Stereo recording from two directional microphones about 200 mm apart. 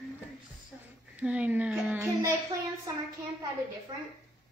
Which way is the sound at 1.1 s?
5° right (ahead or behind).